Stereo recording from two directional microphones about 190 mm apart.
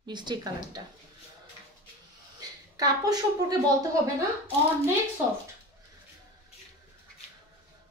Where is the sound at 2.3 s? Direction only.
20° right (ahead or behind).